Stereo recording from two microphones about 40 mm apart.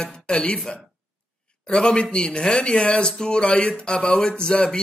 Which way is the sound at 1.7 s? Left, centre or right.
Left.